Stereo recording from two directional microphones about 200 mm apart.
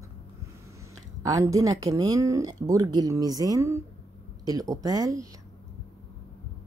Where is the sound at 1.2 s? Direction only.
15° right (ahead or behind).